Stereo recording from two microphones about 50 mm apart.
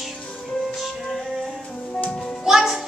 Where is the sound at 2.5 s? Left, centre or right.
Centre.